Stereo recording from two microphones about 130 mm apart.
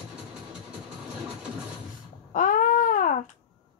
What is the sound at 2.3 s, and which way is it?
Baby cry, 90° left.